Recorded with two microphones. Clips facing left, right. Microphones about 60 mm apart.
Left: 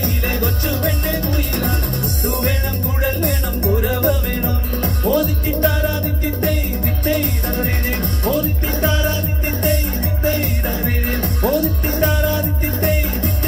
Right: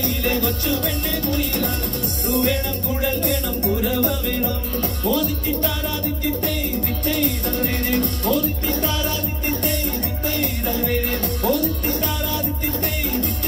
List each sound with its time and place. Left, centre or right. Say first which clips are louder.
0.0 s music: left 1 dB; left
3.0 s music: left 2 dB; left
7.1 s music: left 3 dB; left
10.2 s music: left 4 dB; left